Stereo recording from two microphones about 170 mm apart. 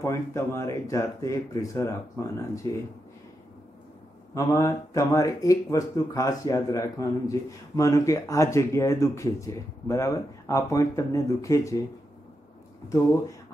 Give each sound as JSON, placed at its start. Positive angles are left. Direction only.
{"t": 0.0, "sound": "speech", "side_deg": 15}
{"t": 4.3, "sound": "speech", "side_deg": 20}